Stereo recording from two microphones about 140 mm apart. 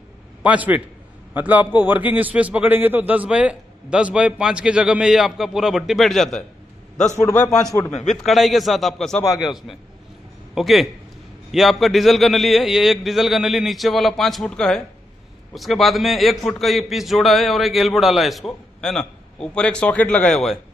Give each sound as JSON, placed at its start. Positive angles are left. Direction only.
{"t": 0.4, "sound": "a man's voice", "side_deg": -10}
{"t": 7.2, "sound": "a man's voice", "side_deg": 20}
{"t": 7.9, "sound": "a man's voice", "side_deg": 55}
{"t": 8.2, "sound": "a man's voice", "side_deg": 0}